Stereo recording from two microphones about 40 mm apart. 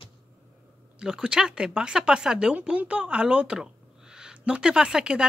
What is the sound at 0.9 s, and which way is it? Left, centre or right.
Speech, centre.